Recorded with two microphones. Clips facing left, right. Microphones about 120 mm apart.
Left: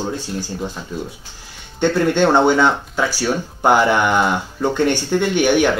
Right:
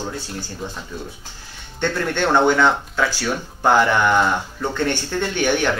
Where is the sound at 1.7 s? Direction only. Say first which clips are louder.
Left 6 dB; 15° left (ahead or behind).